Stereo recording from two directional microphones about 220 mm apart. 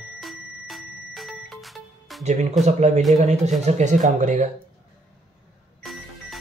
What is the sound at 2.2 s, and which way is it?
Speech, 30° right (ahead or behind).